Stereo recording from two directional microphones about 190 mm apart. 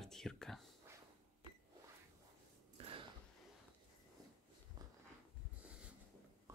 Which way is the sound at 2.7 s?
30° right (ahead or behind).